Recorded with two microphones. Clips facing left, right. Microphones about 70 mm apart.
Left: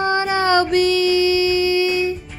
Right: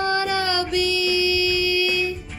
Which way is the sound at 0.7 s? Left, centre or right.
Left.